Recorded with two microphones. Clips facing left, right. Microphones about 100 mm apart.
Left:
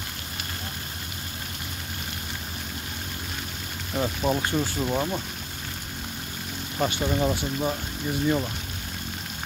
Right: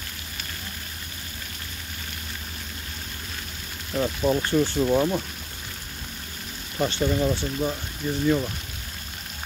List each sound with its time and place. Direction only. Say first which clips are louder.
3.9 s speech: right 2 dB; 15° left (ahead or behind)
4.7 s speech: right 5 dB; centre (ahead or behind)
6.8 s speech: right 1 dB; 15° left (ahead or behind)